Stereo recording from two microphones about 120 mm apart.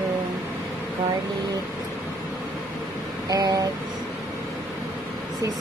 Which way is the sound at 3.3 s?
30° right (ahead or behind).